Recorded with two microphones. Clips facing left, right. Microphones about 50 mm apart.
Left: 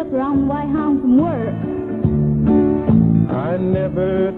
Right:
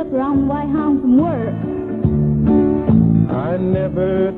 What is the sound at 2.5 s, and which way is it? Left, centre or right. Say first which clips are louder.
Music: even; centre.